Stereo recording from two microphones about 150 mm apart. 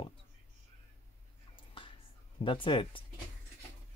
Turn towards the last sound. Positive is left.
turn(degrees=35)  # may be behind; listen again after turning